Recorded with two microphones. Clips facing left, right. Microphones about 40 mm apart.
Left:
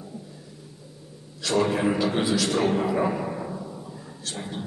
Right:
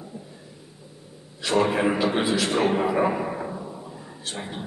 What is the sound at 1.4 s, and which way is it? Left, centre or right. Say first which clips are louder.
A man's voice: right 1 dB; right.